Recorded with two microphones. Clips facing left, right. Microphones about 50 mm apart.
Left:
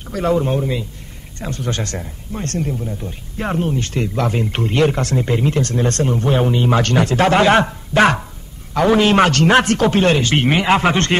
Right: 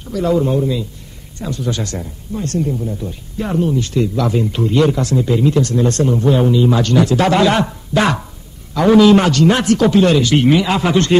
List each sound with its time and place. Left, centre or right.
0.0 s speech: left
1.4 s a man's voice: left
3.0 s a man's voice: left
9.3 s speech: left